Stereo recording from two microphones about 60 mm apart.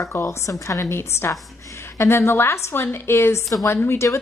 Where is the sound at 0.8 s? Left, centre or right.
Left.